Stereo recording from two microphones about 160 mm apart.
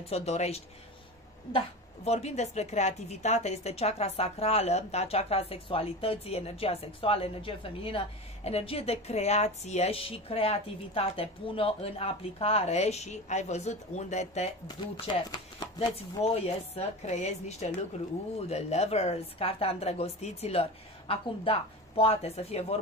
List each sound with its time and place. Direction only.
0.1 s speech: 40° left (ahead or behind)
2.0 s speech: 45° left (ahead or behind)
15.1 s speech: 30° left (ahead or behind)